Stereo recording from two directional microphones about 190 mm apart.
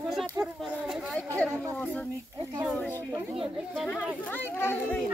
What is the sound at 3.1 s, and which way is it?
Speech, 15° right (ahead or behind).